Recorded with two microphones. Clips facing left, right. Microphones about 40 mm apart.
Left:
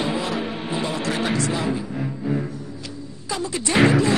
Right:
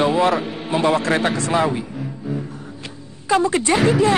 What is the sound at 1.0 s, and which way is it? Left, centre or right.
Speech, right.